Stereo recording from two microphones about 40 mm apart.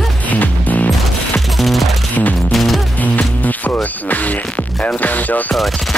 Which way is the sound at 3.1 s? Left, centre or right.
Left.